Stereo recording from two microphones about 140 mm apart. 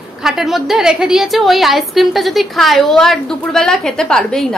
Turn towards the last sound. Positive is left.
turn(degrees=5)  # may be behind; listen again after turning